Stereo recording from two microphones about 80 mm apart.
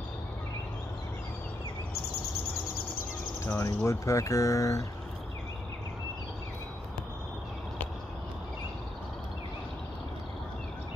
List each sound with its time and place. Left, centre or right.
3.5 s speech: left